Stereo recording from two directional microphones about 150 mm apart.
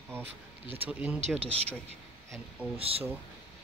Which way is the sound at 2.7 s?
40° right (ahead or behind).